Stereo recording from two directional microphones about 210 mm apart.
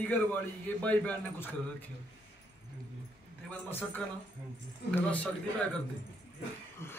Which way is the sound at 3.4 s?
10° left (ahead or behind).